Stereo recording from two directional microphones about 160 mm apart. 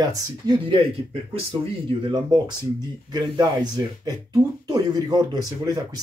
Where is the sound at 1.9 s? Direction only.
30° right (ahead or behind).